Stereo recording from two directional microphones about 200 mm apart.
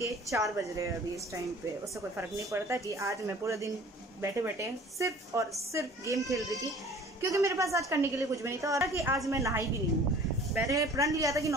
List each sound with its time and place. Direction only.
0.0 s a woman's voice: 15° right (ahead or behind)